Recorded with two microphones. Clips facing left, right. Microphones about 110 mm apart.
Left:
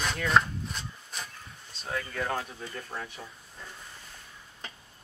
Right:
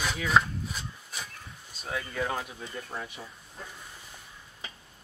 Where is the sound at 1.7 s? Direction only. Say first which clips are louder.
Even; 5° right (ahead or behind).